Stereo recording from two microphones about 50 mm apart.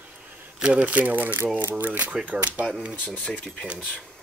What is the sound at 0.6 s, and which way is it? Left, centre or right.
Speech, centre.